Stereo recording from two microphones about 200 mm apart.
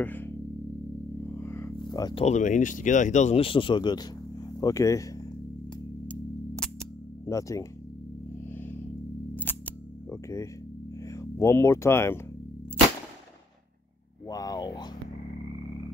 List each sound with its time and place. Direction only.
0.0 s music: 10° left (ahead or behind)
1.4 s a sound: 10° left (ahead or behind)
2.2 s speech: 35° left (ahead or behind); by 5.2 s 15° left (ahead or behind)
6.0 s music: 5° left (ahead or behind)
7.2 s speech: 15° left (ahead or behind)
8.5 s music: 10° left (ahead or behind)
9.3 s camera: 10° left (ahead or behind)
11.1 s speech: 15° left (ahead or behind)
14.2 s speech: 20° left (ahead or behind)